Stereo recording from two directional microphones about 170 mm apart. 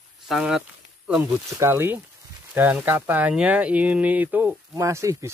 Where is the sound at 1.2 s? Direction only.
15° right (ahead or behind).